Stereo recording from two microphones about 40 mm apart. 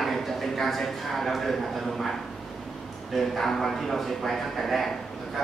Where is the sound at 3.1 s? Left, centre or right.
Centre.